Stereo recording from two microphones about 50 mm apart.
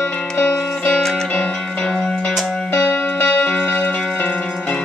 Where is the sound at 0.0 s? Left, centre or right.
Left.